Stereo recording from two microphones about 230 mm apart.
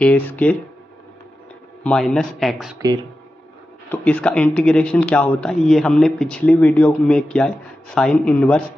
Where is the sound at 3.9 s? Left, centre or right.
Centre.